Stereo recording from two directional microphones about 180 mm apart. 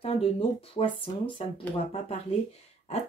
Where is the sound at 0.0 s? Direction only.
30° left (ahead or behind).